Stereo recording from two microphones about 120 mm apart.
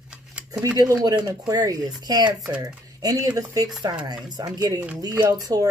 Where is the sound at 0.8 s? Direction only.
30° right (ahead or behind).